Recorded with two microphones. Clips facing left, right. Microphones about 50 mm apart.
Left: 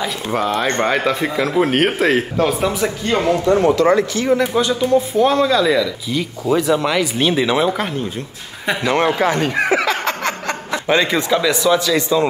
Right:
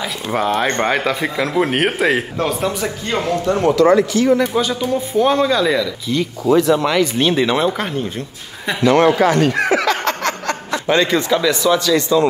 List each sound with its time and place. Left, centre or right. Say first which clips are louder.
0.0 s speech: even; centre
3.4 s speech: right 2 dB; left
4.6 s speech: left 3 dB; centre
8.8 s a man's voice: right 5 dB; left
9.6 s snicker: right 1 dB; left